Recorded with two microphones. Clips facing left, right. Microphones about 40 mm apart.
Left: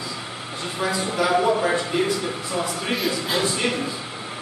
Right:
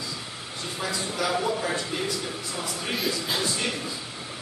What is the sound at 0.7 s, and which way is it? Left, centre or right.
A man's voice, left.